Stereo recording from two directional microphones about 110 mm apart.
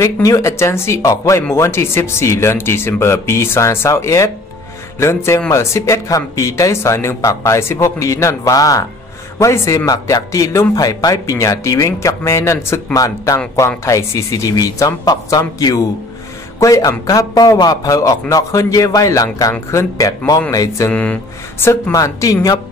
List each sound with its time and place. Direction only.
0.0 s a man's voice: 30° left (ahead or behind)
20.9 s speech: 10° left (ahead or behind)
21.9 s a man's voice: 30° left (ahead or behind)